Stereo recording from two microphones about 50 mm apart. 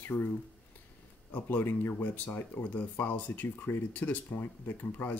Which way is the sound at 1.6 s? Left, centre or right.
Left.